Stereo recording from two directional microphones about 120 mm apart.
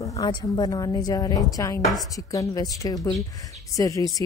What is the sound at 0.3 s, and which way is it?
A woman's voice, 35° left (ahead or behind).